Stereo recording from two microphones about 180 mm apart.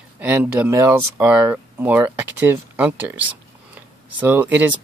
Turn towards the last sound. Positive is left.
turn(degrees=-10)  # may be behind; listen again after turning